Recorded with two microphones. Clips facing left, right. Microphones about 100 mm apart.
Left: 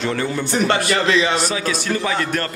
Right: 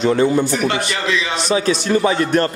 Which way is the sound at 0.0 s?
20° right (ahead or behind).